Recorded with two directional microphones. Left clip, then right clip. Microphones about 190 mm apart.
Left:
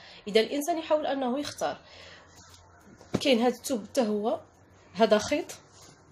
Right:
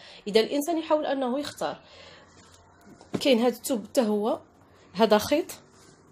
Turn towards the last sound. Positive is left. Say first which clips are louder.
# right 3 dB
turn(degrees=-45)  # may be behind; listen again after turning